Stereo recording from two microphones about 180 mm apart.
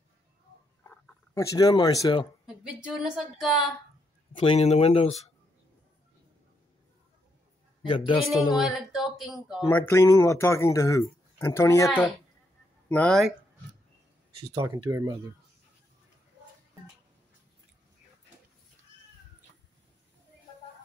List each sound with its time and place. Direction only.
0.8 s speech: 15° left (ahead or behind)
2.4 s a woman's voice: 5° right (ahead or behind)
4.4 s speech: 35° left (ahead or behind)
7.8 s a man's voice: 25° left (ahead or behind)
8.5 s a woman's voice: centre (ahead or behind)
9.7 s speech: 10° left (ahead or behind)
14.6 s speech: 15° right (ahead or behind)